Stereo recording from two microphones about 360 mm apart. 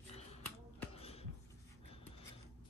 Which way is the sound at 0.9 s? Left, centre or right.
Centre.